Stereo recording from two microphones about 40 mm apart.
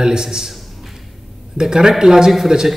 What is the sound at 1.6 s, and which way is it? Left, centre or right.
Speech, centre.